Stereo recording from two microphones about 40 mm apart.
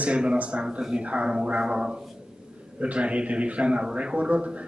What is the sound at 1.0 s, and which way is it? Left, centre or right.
A man's voice, right.